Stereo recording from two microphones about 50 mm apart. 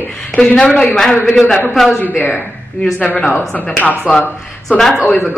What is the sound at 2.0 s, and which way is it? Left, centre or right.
Speech, left.